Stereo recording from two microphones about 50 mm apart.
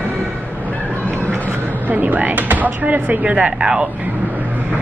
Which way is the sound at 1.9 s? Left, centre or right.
Right.